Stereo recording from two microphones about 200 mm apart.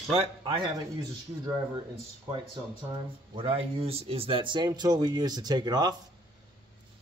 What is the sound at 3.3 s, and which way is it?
Speech, 25° right (ahead or behind).